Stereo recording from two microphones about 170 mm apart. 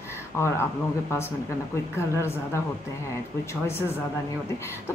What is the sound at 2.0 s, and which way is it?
Speech, 15° left (ahead or behind).